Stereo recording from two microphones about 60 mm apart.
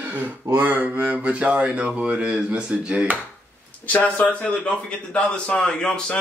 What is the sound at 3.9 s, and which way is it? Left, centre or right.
Speech, left.